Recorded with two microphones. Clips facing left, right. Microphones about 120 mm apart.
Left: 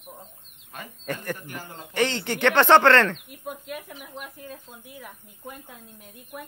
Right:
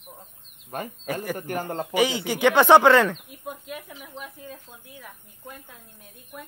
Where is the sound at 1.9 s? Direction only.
10° right (ahead or behind); by 5.7 s 15° left (ahead or behind).